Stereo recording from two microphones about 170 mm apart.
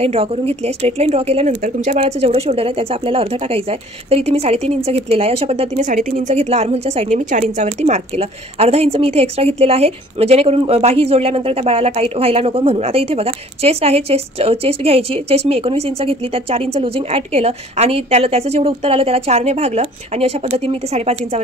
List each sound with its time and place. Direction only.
0.0 s a woman's voice: 35° right (ahead or behind)